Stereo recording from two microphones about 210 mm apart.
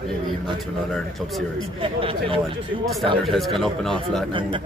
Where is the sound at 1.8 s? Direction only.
25° right (ahead or behind).